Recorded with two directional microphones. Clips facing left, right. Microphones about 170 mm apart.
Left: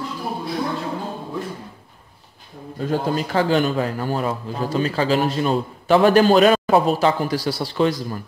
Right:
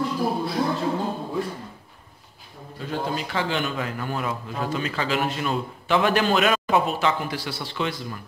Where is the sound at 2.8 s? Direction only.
40° left (ahead or behind).